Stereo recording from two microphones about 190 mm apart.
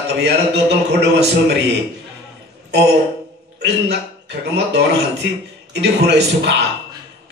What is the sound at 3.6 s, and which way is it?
A man's voice, 65° right (ahead or behind).